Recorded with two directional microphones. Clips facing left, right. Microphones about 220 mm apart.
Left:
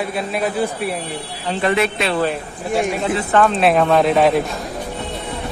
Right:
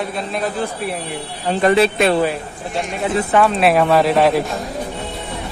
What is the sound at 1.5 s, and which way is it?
Speech, 40° right (ahead or behind).